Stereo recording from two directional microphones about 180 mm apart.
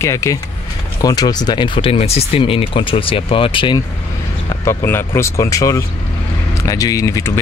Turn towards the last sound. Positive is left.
turn(degrees=20)  # may be behind; listen again after turning